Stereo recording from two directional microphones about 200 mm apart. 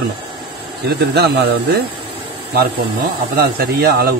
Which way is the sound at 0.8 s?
55° right (ahead or behind).